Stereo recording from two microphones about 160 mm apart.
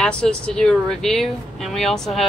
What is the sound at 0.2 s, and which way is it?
Speech, 5° left (ahead or behind).